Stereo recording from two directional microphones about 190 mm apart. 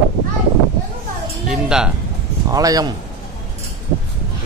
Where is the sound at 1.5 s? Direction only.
5° right (ahead or behind).